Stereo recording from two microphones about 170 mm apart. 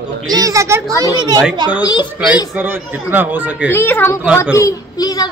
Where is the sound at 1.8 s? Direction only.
25° left (ahead or behind).